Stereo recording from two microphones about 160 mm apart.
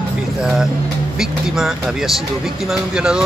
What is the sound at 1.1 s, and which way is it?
Speech, 5° right (ahead or behind).